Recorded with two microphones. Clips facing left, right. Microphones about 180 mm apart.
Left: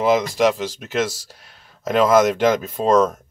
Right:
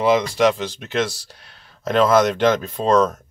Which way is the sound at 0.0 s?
Centre (ahead or behind).